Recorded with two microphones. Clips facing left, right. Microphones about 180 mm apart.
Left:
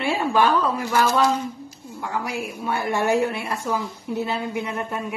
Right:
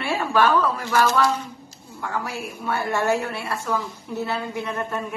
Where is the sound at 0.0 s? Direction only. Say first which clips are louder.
Left 1 dB; 15° left (ahead or behind).